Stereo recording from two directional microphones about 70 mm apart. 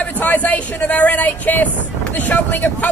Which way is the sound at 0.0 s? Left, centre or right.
Left.